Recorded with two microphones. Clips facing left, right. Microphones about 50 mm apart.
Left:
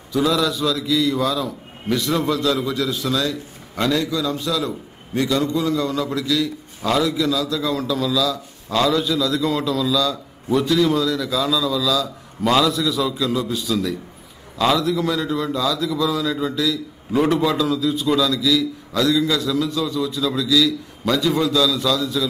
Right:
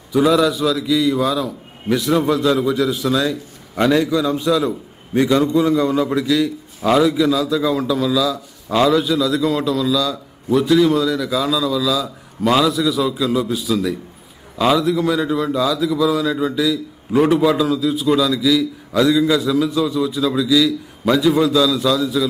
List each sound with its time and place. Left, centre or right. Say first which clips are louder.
0.1 s a man's voice: right 5 dB; centre
0.6 s a man's voice: right 3 dB; centre